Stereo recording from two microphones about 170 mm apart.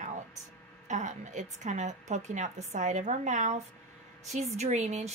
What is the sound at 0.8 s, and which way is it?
A woman's voice, 45° right (ahead or behind).